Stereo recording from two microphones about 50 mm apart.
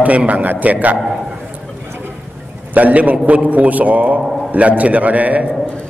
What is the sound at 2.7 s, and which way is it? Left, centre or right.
A man's voice, right.